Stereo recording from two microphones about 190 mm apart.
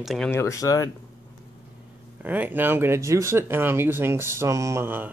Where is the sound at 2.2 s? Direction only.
10° right (ahead or behind).